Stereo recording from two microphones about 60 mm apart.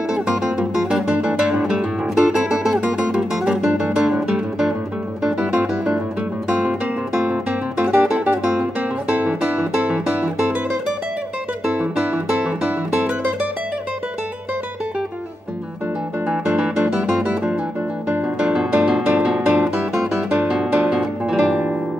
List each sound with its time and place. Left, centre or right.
0.1 s music: centre
7.8 s music: right
11.6 s music: centre
16.3 s music: centre
17.2 s guitar: centre
18.4 s music: centre